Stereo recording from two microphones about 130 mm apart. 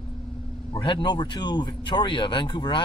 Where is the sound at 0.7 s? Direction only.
35° left (ahead or behind).